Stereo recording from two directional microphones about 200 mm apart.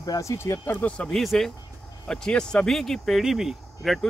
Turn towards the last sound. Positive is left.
turn(degrees=0)  # may be behind; listen again after turning